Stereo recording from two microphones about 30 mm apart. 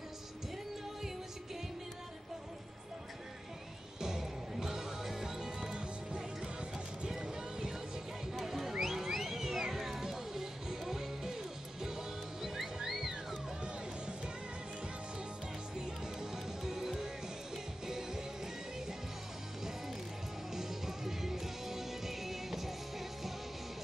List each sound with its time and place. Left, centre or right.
4.0 s music: centre
5.8 s music: right
7.1 s vehicle: centre
8.5 s a sound: centre
9.1 s music: centre
15.8 s music: right
16.6 s music: centre
20.5 s music: centre